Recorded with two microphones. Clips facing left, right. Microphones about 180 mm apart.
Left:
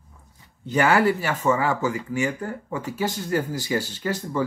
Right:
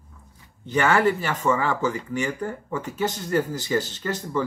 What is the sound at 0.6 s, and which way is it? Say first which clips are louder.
Speech: left 1 dB; 10° left (ahead or behind).